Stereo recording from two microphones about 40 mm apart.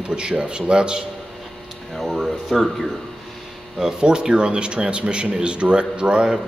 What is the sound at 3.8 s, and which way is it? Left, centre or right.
Speech, right.